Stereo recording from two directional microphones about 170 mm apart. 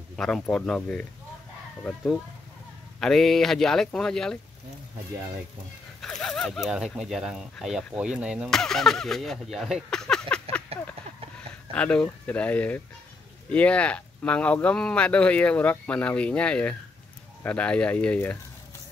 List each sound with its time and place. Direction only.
0.1 s speech: 5° left (ahead or behind)
5.9 s speech: 5° left (ahead or behind)
10.7 s a sound: 35° right (ahead or behind)
11.3 s speech: 5° left (ahead or behind)